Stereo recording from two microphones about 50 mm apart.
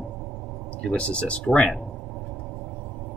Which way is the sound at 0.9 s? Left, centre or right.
Left.